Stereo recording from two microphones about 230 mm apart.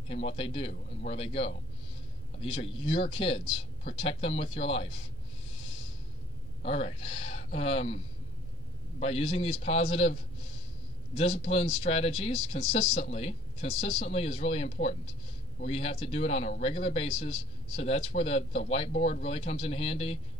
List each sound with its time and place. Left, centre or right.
0.1 s speech: left
6.6 s speech: left
9.0 s speech: left